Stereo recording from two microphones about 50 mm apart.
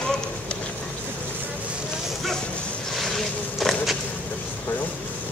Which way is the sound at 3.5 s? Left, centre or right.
Centre.